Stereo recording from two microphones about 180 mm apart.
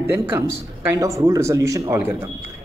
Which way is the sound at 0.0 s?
15° right (ahead or behind).